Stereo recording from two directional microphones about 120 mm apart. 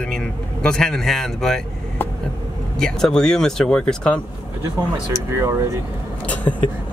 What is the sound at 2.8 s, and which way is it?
Speech, 5° left (ahead or behind).